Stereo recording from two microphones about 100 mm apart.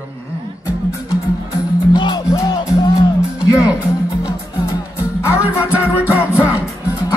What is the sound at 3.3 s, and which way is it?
Music, 15° right (ahead or behind).